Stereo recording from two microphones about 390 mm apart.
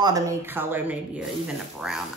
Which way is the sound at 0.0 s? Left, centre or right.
Centre.